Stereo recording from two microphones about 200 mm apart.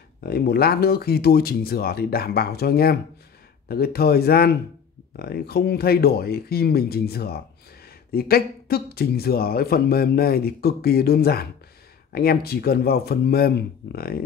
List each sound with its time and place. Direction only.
0.2 s speech: 50° left (ahead or behind)